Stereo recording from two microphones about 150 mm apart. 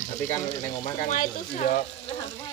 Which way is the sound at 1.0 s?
60° left (ahead or behind).